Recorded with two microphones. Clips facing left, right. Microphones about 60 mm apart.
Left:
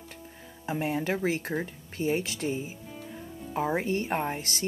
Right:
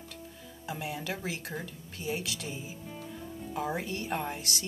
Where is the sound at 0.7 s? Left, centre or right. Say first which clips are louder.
Left 7 dB; left.